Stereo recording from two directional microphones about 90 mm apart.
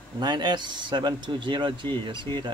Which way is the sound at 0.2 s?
50° right (ahead or behind).